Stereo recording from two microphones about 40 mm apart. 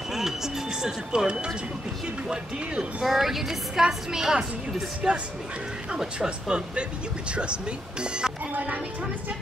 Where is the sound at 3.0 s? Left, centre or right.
Centre.